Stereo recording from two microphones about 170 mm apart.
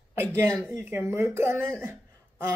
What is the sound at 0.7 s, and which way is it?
Speech, 15° right (ahead or behind).